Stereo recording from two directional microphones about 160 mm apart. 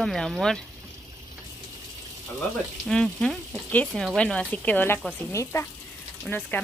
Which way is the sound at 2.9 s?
5° left (ahead or behind).